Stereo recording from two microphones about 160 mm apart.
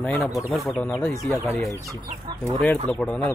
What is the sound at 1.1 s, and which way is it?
Speech, 20° left (ahead or behind).